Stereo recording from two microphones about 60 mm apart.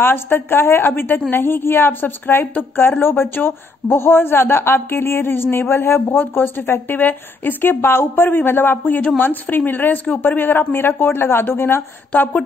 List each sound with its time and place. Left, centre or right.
0.0 s a woman's voice: left
12.1 s speech: left